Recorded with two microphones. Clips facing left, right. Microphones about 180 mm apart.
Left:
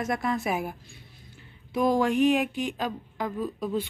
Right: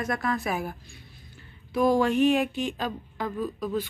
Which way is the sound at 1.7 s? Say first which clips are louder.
Right 1 dB; 20° left (ahead or behind).